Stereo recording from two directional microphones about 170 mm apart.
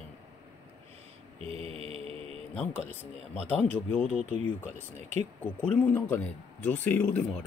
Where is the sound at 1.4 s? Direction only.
35° right (ahead or behind).